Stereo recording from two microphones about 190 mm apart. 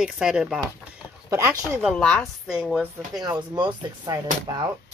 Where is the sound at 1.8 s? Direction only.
5° left (ahead or behind).